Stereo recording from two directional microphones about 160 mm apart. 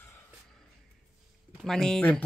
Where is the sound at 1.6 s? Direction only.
5° left (ahead or behind).